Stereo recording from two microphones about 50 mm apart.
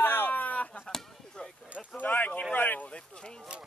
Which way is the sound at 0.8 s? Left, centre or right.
Centre.